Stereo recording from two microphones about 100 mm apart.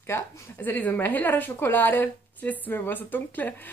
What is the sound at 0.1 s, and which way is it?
A woman's voice, 25° left (ahead or behind).